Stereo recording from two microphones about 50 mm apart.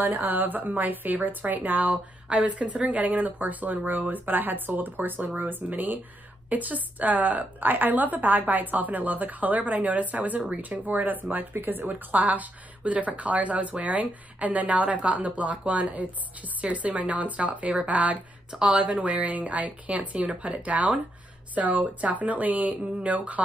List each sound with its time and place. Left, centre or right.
0.0 s a woman's voice: right; by 18.9 s centre
18.9 s a woman's voice: right